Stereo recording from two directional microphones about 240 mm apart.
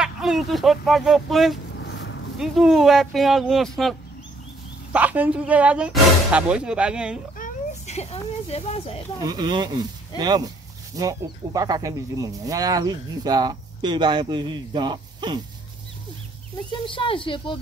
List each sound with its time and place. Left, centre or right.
0.0 s speech: centre
1.8 s a sound: left
2.3 s speech: centre
4.9 s speech: centre
7.3 s a sound: left
9.2 s speech: centre
16.7 s a woman's voice: left